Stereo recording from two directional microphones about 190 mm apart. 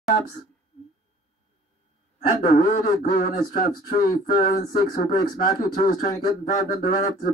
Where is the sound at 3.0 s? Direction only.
50° left (ahead or behind).